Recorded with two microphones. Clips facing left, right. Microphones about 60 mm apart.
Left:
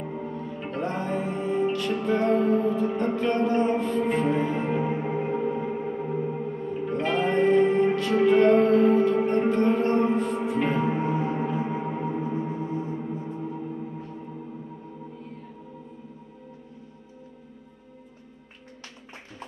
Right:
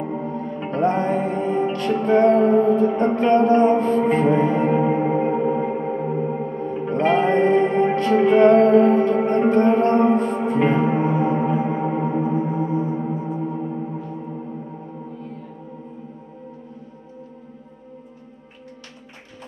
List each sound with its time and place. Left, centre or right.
0.0 s music: right
13.4 s gong: right